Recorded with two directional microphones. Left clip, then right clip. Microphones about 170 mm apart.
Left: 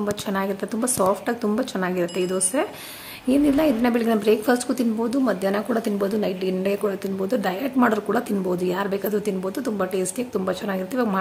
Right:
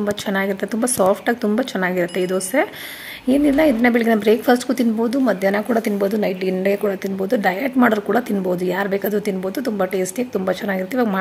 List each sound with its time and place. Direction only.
0.0 s a woman's voice: 20° right (ahead or behind)